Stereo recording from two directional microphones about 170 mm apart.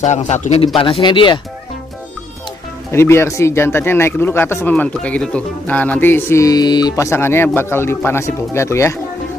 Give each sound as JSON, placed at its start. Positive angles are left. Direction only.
{"t": 0.0, "sound": "a man's voice", "side_deg": 45}
{"t": 0.7, "sound": "speech", "side_deg": 30}
{"t": 2.9, "sound": "speech", "side_deg": 15}